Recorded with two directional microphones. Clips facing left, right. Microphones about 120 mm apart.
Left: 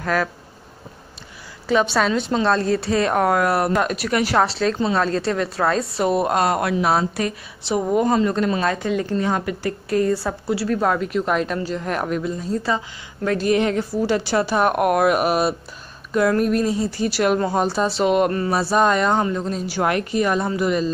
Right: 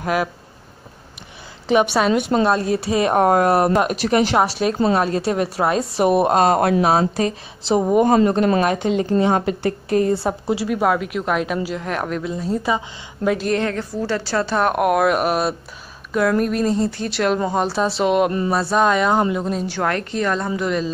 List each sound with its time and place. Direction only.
0.0 s speech: 15° right (ahead or behind)
1.7 s a woman's voice: 15° right (ahead or behind)
12.6 s a woman's voice: 15° right (ahead or behind)
13.6 s a woman's voice: 15° left (ahead or behind); by 19.6 s 5° right (ahead or behind)
19.6 s speech: 10° left (ahead or behind)